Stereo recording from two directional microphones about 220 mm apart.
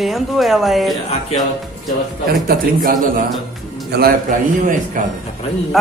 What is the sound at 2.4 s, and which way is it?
A man's voice, 40° right (ahead or behind).